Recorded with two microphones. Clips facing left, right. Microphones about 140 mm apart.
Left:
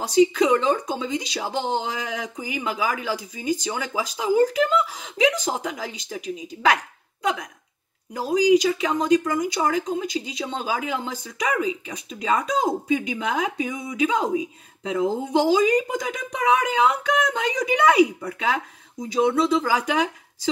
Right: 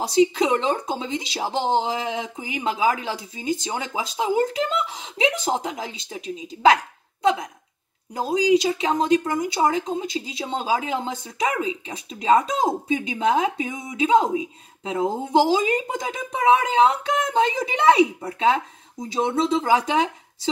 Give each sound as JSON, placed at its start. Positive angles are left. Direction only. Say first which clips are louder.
{"t": 0.0, "sound": "speech", "louder": "left 1 dB", "side_deg": -30}
{"t": 8.1, "sound": "speech", "louder": "left 1 dB", "side_deg": -30}